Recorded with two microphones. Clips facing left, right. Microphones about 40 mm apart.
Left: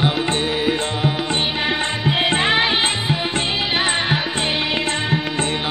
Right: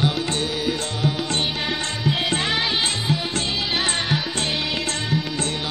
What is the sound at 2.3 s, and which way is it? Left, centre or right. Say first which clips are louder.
Music: left 5 dB; left.